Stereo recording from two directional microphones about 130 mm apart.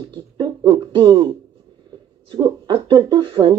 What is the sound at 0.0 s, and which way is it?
Speech, 35° right (ahead or behind).